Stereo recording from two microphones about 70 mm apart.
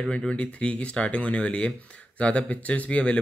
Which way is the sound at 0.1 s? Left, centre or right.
Centre.